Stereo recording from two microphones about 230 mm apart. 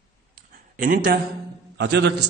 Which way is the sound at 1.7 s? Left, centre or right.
Right.